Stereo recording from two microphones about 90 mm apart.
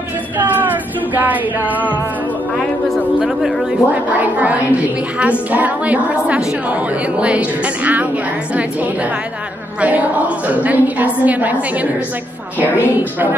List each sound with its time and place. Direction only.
0.4 s music: 20° right (ahead or behind)
3.2 s a woman's voice: 15° right (ahead or behind)
9.8 s a woman's voice: 15° right (ahead or behind)